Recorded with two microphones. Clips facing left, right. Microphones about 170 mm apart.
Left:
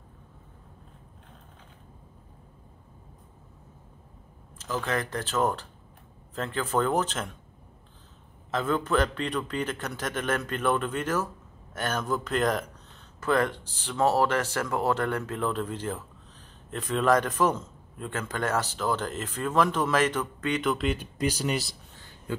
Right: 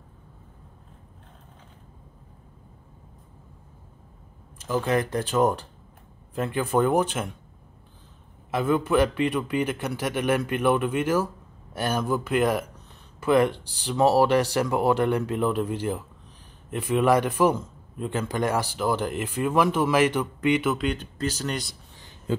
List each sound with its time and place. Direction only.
4.6 s a man's voice: 10° right (ahead or behind)
8.5 s a man's voice: 10° right (ahead or behind)
20.7 s speech: 5° left (ahead or behind)
21.9 s a sound: 15° right (ahead or behind)